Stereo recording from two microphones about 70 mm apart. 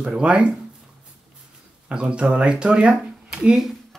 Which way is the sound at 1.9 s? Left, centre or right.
Centre.